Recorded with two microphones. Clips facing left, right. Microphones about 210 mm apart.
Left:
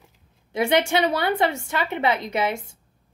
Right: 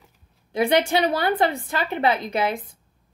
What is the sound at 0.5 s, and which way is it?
A woman's voice, 25° left (ahead or behind).